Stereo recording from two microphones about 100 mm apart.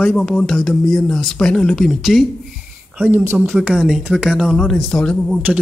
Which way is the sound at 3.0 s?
20° right (ahead or behind).